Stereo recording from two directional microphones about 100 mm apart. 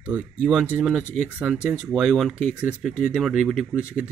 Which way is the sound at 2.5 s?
15° right (ahead or behind).